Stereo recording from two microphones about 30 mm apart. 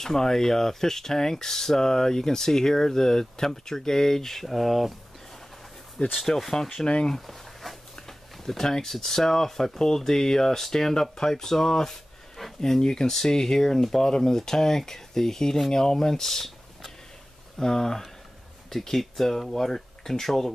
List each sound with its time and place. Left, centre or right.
0.0 s speech: centre
6.2 s speech: centre
7.2 s a sound: centre
8.9 s speech: centre
12.4 s speech: centre
12.8 s speech: left